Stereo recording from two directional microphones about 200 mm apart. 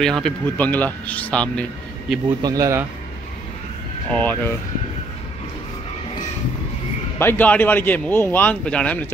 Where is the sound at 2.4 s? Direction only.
15° right (ahead or behind).